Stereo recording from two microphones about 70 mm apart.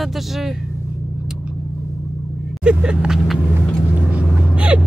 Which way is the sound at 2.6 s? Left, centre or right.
Centre.